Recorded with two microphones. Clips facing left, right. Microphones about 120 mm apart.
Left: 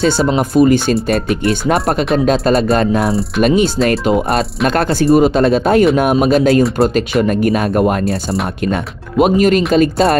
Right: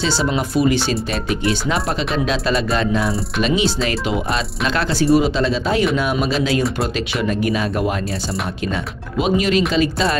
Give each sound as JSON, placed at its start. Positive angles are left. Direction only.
{"t": 0.6, "sound": "speech", "side_deg": 45}
{"t": 9.2, "sound": "speech", "side_deg": 50}